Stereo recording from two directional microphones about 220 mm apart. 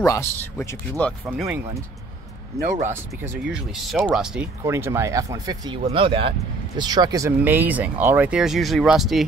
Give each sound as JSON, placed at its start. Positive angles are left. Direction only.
{"t": 0.0, "sound": "speech", "side_deg": 15}
{"t": 2.8, "sound": "speech", "side_deg": -10}